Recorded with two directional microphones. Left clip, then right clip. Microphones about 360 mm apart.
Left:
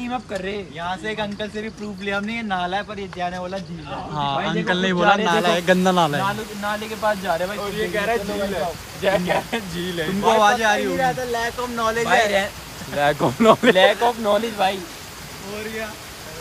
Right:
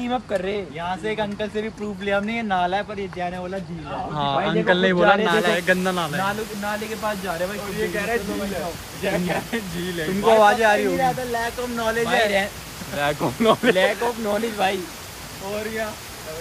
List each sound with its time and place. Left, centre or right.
0.1 s speech: centre; by 10.4 s left
10.4 s speech: centre
11.0 s speech: left; by 14.8 s centre